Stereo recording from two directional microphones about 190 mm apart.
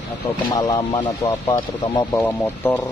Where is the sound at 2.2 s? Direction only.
10° left (ahead or behind).